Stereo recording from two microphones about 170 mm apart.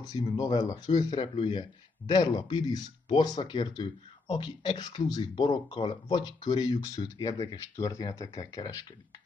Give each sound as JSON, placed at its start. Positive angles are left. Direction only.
{"t": 0.0, "sound": "speech", "side_deg": 20}